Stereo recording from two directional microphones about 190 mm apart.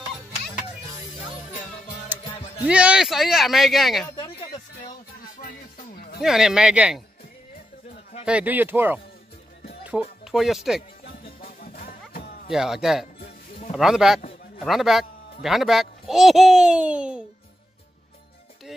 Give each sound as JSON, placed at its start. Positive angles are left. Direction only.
{"t": 2.2, "sound": "music", "side_deg": 25}
{"t": 2.6, "sound": "a child's voice", "side_deg": -5}
{"t": 6.2, "sound": "a child's voice", "side_deg": -5}
{"t": 7.9, "sound": "a sound", "side_deg": 35}
{"t": 8.3, "sound": "speech", "side_deg": -10}
{"t": 10.2, "sound": "speech", "side_deg": 0}
{"t": 11.8, "sound": "music", "side_deg": 50}
{"t": 12.4, "sound": "a child's voice", "side_deg": 0}
{"t": 18.7, "sound": "music", "side_deg": 0}